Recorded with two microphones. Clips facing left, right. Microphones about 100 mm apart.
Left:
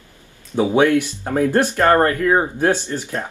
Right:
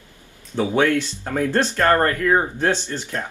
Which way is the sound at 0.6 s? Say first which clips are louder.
Left 4 dB; 15° left (ahead or behind).